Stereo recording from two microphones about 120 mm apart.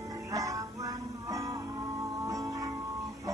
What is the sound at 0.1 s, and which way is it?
Music, 30° right (ahead or behind).